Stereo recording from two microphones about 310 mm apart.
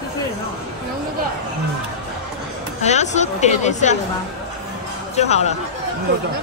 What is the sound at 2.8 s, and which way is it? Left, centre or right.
A woman's voice, left.